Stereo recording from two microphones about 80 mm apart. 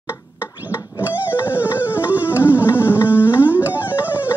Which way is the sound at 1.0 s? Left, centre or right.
Right.